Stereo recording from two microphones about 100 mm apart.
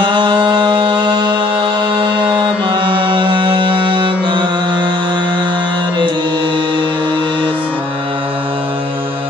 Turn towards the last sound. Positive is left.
turn(degrees=15)  # may be behind; listen again after turning